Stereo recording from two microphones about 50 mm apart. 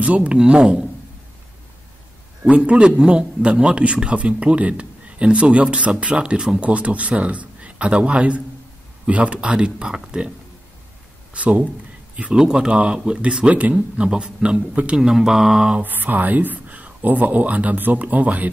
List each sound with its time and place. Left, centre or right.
0.0 s a man's voice: right
2.5 s a man's voice: right
6.6 s a man's voice: right
11.3 s speech: right
12.4 s a man's voice: centre
15.0 s speech: centre
15.8 s speech: right